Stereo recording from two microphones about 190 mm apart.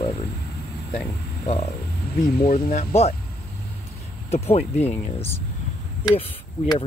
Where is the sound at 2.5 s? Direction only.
35° left (ahead or behind).